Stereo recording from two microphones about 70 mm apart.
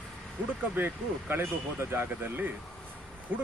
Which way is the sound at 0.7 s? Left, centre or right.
Right.